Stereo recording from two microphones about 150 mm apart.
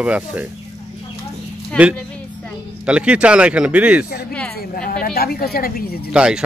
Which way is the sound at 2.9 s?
5° right (ahead or behind).